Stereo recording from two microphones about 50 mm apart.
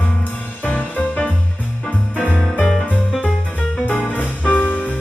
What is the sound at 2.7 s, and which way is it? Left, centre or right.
Music, left.